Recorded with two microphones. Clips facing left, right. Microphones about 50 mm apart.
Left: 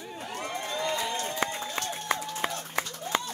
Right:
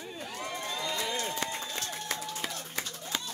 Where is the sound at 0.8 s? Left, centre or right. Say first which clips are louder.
Left 3 dB; left.